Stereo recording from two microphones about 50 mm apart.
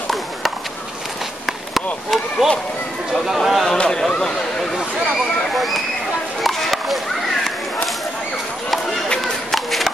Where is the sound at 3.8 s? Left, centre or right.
Centre.